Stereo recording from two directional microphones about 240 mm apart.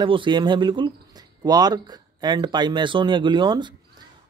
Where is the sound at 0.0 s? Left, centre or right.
Centre.